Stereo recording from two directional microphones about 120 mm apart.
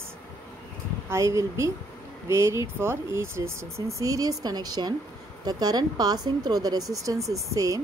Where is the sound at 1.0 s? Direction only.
25° right (ahead or behind).